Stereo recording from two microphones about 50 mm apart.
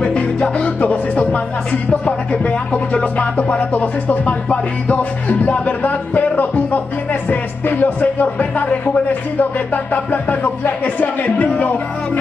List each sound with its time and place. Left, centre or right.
0.0 s music: left
10.4 s speech: left